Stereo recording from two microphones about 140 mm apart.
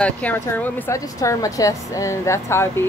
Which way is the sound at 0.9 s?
20° left (ahead or behind).